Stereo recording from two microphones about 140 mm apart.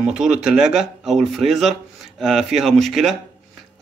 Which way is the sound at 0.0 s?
5° right (ahead or behind).